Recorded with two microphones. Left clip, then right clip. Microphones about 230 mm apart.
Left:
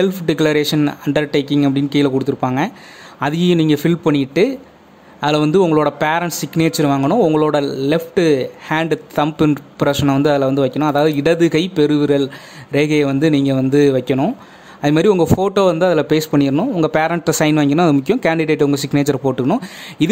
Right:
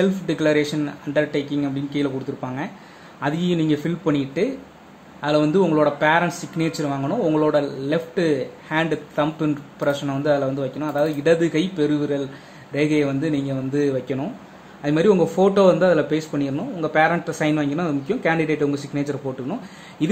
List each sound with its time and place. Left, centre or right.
0.0 s speech: left